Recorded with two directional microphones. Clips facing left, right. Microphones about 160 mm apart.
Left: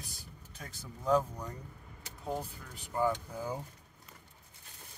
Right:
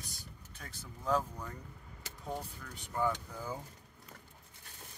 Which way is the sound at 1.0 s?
20° left (ahead or behind).